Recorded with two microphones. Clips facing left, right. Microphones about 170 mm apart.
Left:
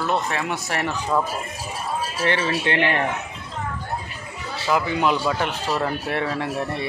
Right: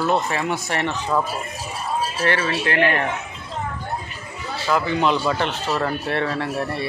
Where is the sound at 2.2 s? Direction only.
20° left (ahead or behind).